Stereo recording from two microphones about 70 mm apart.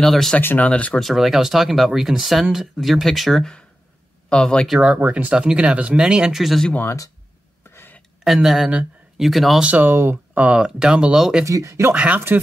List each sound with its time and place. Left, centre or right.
0.0 s speech: centre
0.4 s speech: left
0.7 s speech: centre
0.9 s speech: centre
4.3 s speech: centre
4.6 s speech: centre
7.7 s a sound: left
8.2 s speech: centre
9.6 s speech: right
10.6 s speech: centre
11.4 s speech: right
11.9 s speech: right